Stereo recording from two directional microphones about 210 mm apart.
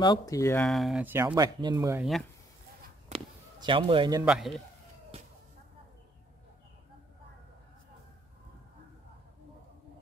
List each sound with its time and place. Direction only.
0.0 s speech: 20° left (ahead or behind)
0.7 s speech: centre (ahead or behind); by 2.0 s 15° right (ahead or behind)
3.1 s a sound: 25° right (ahead or behind)
4.2 s a man's voice: centre (ahead or behind)